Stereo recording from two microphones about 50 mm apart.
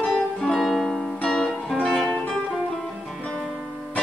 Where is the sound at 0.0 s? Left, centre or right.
Centre.